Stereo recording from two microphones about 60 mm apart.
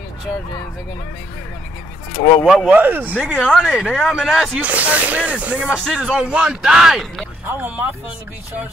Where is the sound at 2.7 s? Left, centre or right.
Right.